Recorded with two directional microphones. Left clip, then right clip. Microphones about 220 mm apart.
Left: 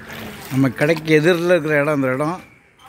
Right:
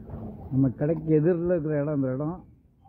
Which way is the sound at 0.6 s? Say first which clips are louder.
Left 9 dB; 35° left (ahead or behind).